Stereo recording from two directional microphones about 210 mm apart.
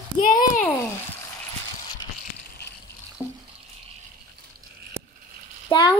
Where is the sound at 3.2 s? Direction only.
10° right (ahead or behind).